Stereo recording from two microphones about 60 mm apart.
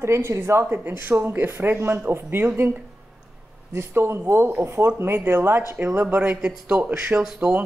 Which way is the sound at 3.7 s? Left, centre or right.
Right.